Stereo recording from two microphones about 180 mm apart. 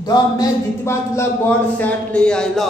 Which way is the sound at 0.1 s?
20° left (ahead or behind).